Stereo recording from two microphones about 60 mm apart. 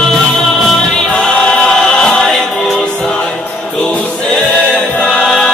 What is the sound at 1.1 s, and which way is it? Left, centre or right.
Choir, centre.